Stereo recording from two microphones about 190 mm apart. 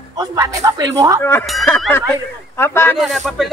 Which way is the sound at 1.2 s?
10° left (ahead or behind).